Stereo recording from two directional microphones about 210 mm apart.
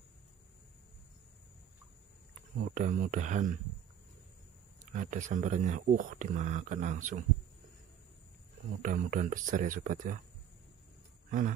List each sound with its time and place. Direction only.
2.6 s speech: 40° right (ahead or behind)
4.9 s speech: 35° right (ahead or behind)
8.8 s speech: 40° right (ahead or behind)
11.2 s speech: 40° right (ahead or behind)